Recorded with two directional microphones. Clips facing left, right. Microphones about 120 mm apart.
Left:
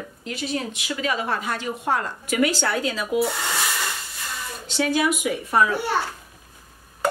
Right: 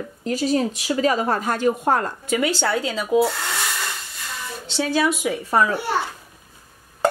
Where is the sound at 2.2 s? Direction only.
25° right (ahead or behind).